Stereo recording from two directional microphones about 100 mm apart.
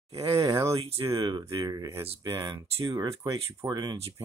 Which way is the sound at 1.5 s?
40° right (ahead or behind).